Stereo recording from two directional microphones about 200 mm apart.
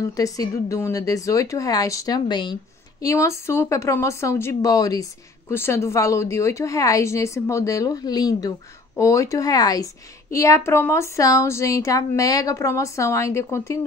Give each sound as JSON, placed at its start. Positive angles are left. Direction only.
{"t": 0.1, "sound": "speech", "side_deg": 15}